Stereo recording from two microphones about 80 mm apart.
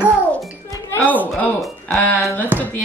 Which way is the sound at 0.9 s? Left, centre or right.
Left.